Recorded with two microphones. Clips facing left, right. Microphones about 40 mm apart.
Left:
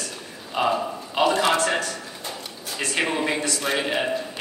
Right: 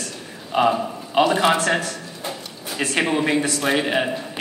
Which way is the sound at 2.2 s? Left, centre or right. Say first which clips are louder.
Right 3 dB; centre.